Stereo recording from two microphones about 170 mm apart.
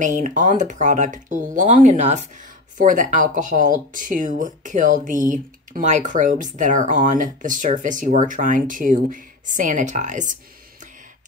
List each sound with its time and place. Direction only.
0.0 s speech: 50° right (ahead or behind)